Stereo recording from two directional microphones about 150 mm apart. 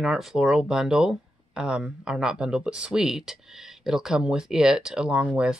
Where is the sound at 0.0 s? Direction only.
Centre (ahead or behind).